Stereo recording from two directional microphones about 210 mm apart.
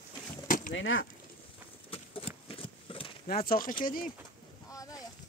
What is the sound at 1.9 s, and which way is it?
Horse, 25° left (ahead or behind).